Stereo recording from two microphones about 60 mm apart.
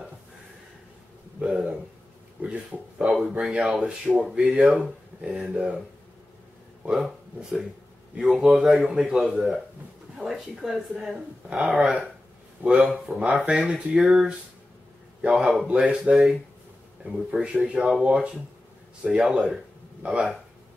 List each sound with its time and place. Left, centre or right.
1.4 s a sound: centre
2.4 s speech: right
3.2 s speech: centre
6.8 s speech: centre
12.9 s speech: centre
13.5 s speech: centre
15.7 s speech: centre
19.0 s speech: centre
20.0 s speech: centre